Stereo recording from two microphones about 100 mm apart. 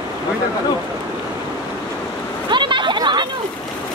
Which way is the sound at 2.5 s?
50° right (ahead or behind).